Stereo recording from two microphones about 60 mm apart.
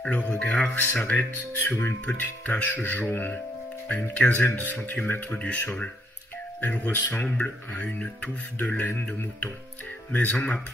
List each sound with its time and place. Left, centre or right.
0.0 s speech: centre